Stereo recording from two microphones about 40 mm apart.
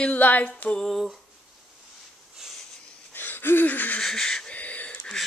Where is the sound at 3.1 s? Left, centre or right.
Left.